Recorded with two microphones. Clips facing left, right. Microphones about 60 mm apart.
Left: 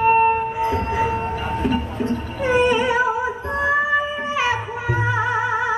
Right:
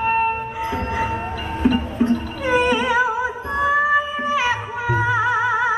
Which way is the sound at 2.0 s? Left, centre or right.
Centre.